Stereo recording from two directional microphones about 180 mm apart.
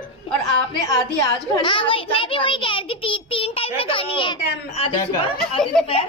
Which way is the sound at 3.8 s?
30° left (ahead or behind).